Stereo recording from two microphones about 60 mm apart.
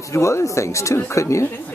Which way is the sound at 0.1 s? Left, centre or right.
Left.